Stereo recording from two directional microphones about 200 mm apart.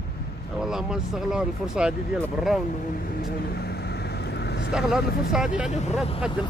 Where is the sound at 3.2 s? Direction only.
50° left (ahead or behind).